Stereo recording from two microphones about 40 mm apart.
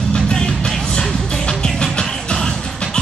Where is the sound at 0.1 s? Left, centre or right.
Centre.